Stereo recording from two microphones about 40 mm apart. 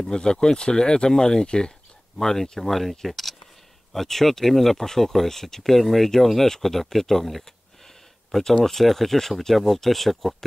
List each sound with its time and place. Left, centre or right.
0.0 s speech: centre
2.6 s speech: centre